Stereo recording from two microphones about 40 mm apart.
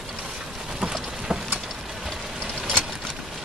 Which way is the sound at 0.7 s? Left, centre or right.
Centre.